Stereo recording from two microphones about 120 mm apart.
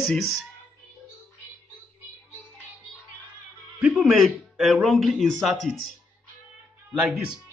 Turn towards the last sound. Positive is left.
turn(degrees=-5)  # may be behind; listen again after turning